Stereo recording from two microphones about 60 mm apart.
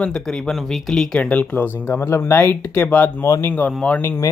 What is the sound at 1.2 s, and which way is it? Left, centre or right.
Speech, left.